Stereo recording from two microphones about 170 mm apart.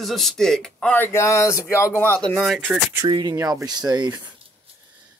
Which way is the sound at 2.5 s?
Centre (ahead or behind).